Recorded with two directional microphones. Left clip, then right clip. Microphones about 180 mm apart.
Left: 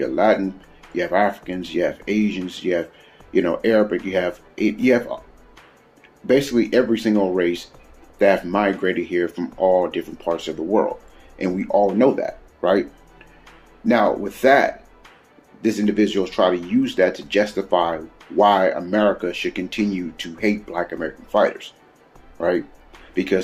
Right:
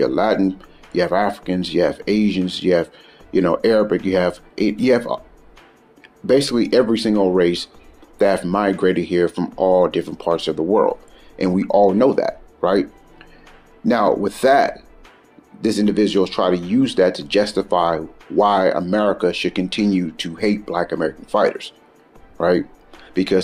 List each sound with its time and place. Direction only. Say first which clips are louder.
0.0 s speech: right 1 dB; 35° right (ahead or behind)
6.2 s speech: right 2 dB; 35° right (ahead or behind)
13.8 s speech: right 1 dB; 35° right (ahead or behind)
23.1 s speech: right 3 dB; 35° right (ahead or behind)